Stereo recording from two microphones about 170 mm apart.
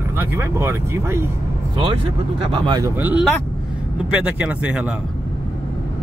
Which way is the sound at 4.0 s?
5° right (ahead or behind).